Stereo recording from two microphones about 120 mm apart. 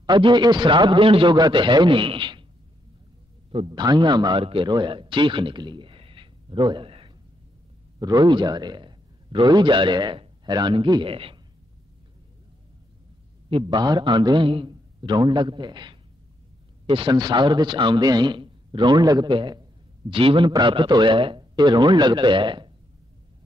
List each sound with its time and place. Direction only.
0.0 s a man's voice: 40° right (ahead or behind)
3.5 s a man's voice: 40° right (ahead or behind)
8.0 s a man's voice: 35° right (ahead or behind)
13.5 s a man's voice: 40° right (ahead or behind)